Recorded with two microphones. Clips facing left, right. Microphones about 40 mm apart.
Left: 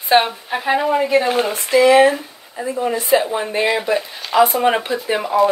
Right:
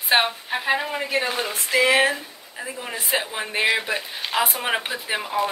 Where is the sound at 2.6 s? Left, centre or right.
Centre.